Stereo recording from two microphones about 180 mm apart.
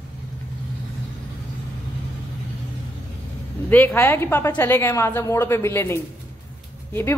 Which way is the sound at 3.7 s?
10° left (ahead or behind).